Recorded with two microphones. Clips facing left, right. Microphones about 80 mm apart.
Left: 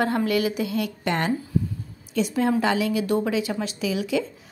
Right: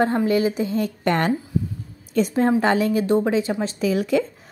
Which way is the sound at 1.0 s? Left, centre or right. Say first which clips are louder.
Right 5 dB; right.